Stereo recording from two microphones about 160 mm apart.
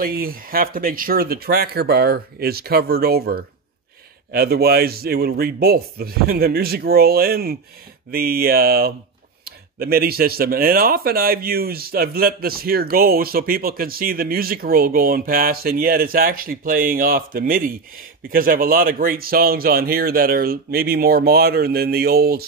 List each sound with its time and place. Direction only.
0.0 s speech: 65° right (ahead or behind)